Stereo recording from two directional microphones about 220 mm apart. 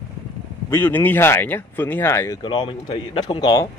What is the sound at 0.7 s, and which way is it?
A man's voice, 10° left (ahead or behind).